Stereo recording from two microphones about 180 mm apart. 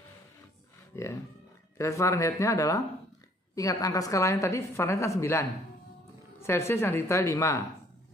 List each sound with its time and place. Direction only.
0.9 s a woman's voice: 15° left (ahead or behind)